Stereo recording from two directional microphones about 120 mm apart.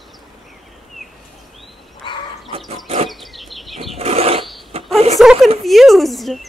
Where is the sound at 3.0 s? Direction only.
Centre (ahead or behind).